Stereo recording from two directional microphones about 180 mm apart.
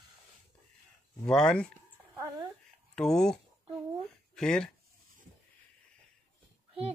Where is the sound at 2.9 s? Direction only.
5° left (ahead or behind).